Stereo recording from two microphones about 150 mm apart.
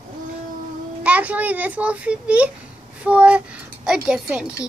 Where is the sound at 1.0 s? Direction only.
10° right (ahead or behind).